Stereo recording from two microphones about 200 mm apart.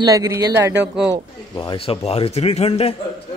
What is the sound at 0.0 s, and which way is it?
Speech, 15° right (ahead or behind).